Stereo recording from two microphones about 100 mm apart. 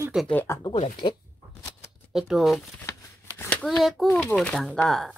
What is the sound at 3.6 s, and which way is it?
A child's voice, centre (ahead or behind).